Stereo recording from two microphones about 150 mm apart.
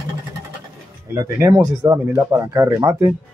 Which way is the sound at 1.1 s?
20° right (ahead or behind).